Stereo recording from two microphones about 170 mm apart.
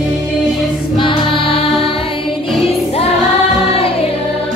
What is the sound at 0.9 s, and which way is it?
Choir, 30° left (ahead or behind).